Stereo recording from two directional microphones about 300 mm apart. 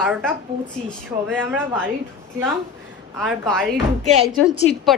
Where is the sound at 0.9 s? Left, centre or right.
Centre.